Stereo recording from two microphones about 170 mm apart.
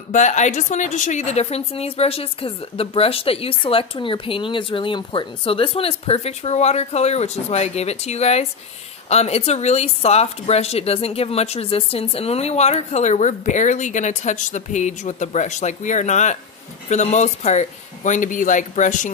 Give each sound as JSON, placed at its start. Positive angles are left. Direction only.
{"t": 0.1, "sound": "a woman's voice", "side_deg": 45}